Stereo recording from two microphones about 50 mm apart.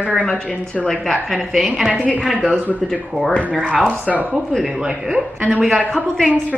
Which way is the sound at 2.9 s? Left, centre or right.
Centre.